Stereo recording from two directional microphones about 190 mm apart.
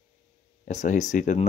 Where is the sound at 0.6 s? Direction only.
40° left (ahead or behind).